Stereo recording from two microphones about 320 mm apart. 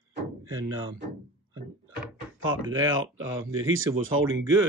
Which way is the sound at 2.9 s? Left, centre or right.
Right.